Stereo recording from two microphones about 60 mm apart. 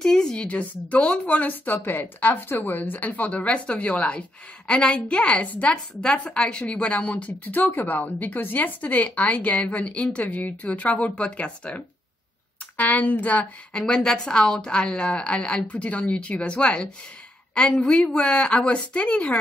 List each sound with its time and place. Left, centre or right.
0.0 s a woman's voice: centre
13.7 s a woman's voice: centre